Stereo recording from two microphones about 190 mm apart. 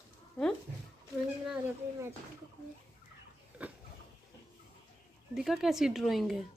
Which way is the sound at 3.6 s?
5° right (ahead or behind).